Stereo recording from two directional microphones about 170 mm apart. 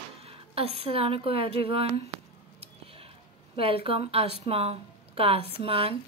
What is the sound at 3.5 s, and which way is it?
A woman's voice, 35° right (ahead or behind).